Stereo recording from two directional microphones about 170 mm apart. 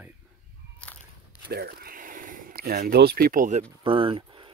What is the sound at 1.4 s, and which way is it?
Speech, 65° right (ahead or behind).